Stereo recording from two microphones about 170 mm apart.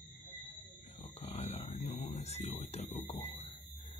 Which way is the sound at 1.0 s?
40° left (ahead or behind).